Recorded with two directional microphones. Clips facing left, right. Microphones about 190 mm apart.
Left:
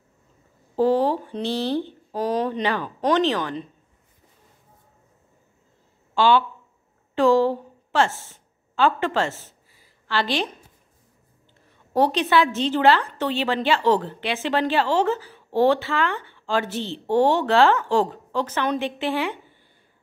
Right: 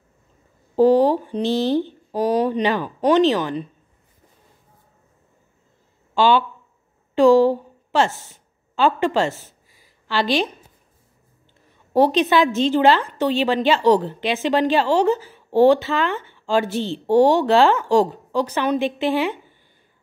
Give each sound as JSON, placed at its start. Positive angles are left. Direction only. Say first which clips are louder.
{"t": 0.7, "sound": "a woman's voice", "louder": "right 5 dB", "side_deg": -15}
{"t": 6.1, "sound": "a woman's voice", "louder": "right 2 dB", "side_deg": -15}
{"t": 9.8, "sound": "a sound", "louder": "right 3 dB", "side_deg": -15}
{"t": 11.9, "sound": "a woman's voice", "louder": "right 3 dB", "side_deg": -15}